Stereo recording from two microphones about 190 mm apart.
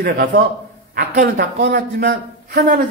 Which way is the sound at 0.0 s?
60° right (ahead or behind).